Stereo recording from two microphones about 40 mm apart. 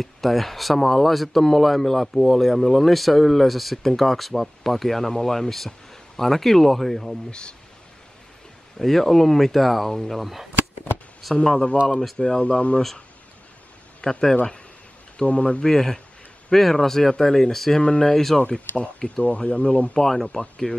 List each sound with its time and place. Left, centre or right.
0.0 s speech: centre
7.2 s speech: left
8.7 s speech: centre
10.2 s speech: centre
11.5 s speech: left
11.9 s speech: centre
12.2 s speech: left
14.0 s speech: centre
15.2 s speech: left
15.6 s speech: centre
17.8 s speech: left
18.1 s speech: centre
18.8 s speech: left
20.0 s speech: centre